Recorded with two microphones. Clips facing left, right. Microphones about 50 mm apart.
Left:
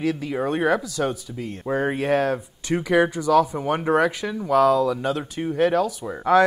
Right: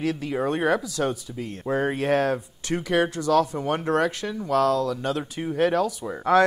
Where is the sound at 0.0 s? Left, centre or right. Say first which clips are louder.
Left 1 dB; centre.